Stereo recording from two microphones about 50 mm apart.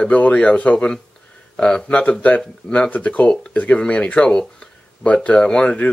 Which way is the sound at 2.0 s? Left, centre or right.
Left.